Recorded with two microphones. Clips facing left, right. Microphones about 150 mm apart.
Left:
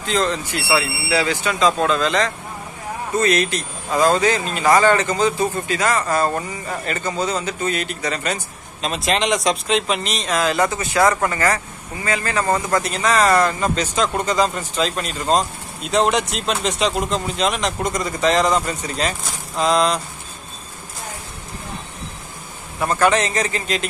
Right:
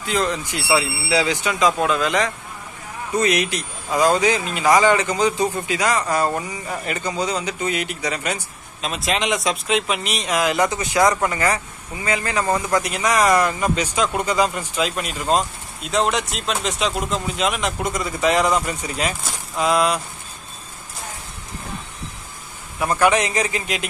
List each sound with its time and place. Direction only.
0.0 s speech: 10° right (ahead or behind)
22.8 s speech: 10° right (ahead or behind)